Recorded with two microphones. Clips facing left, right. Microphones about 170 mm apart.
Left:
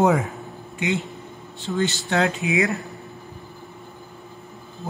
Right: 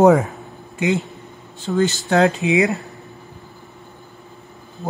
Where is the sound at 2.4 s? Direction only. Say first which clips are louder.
Right 5 dB; 20° right (ahead or behind).